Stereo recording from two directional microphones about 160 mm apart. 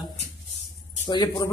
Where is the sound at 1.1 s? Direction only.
25° left (ahead or behind).